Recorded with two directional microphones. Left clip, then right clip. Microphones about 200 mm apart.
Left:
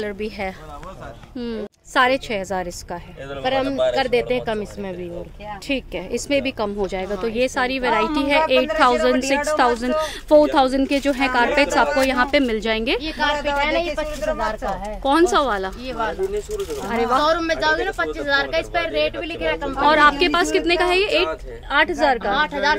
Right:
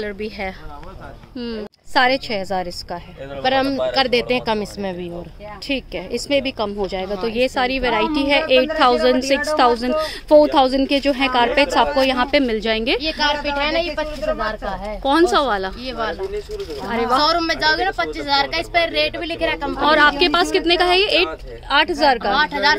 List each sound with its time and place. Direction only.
0.0 s speech: 5° left (ahead or behind)
3.4 s a woman's voice: 50° right (ahead or behind)
5.7 s speech: centre (ahead or behind)
13.7 s speech: 20° right (ahead or behind)
15.0 s speech: 5° right (ahead or behind)
15.9 s a woman's voice: 50° right (ahead or behind)
16.8 s speech: 5° right (ahead or behind)
17.2 s a woman's voice: 50° right (ahead or behind)
19.8 s a woman's voice: 5° right (ahead or behind)
22.3 s a woman's voice: 55° right (ahead or behind)